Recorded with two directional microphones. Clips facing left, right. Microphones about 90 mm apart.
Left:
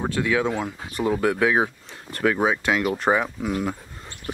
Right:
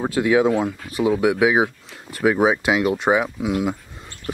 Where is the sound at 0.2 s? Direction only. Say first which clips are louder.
Right 6 dB; 20° right (ahead or behind).